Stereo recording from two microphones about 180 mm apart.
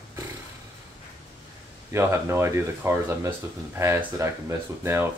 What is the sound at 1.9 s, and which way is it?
Speech, 15° right (ahead or behind).